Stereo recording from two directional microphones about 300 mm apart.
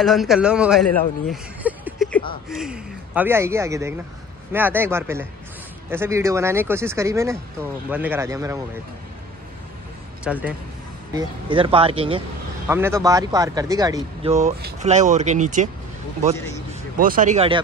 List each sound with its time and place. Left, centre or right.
0.0 s speech: centre
10.2 s speech: centre
11.1 s speech: centre
17.0 s speech: right